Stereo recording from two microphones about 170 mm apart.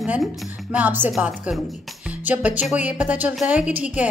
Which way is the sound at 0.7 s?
10° right (ahead or behind).